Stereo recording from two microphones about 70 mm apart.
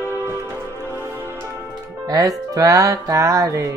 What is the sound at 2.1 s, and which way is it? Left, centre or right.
Music, right.